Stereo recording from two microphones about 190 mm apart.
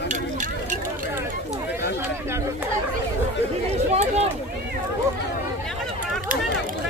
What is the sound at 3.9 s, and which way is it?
Speech, 35° right (ahead or behind).